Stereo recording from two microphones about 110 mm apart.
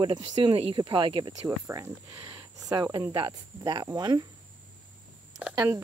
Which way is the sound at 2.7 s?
25° right (ahead or behind).